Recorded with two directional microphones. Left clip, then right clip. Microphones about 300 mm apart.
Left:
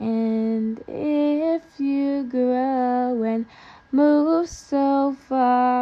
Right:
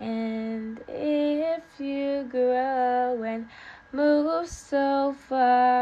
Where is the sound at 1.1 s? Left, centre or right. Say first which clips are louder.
Left 5 dB; left.